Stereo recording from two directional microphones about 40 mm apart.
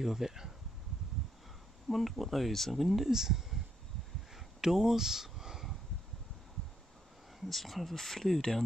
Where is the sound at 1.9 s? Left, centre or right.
Centre.